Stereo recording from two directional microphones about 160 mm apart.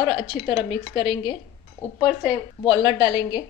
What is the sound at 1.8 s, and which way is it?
Speech, 15° left (ahead or behind).